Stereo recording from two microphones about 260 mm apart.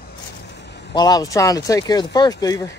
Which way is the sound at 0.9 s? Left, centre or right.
Centre.